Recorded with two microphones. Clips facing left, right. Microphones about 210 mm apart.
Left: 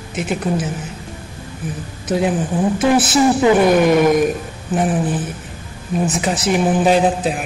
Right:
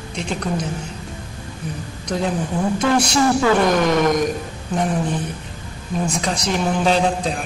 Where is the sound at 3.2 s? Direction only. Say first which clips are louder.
Left 4 dB; 15° left (ahead or behind).